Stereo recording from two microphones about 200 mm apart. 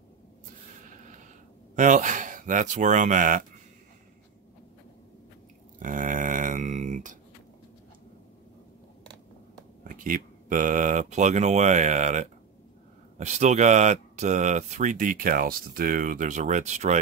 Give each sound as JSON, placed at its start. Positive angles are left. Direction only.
{"t": 1.8, "sound": "speech", "side_deg": -40}
{"t": 5.8, "sound": "a sound", "side_deg": -40}
{"t": 9.8, "sound": "speech", "side_deg": -40}